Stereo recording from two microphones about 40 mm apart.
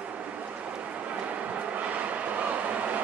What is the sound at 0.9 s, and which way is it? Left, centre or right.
Vehicle, right.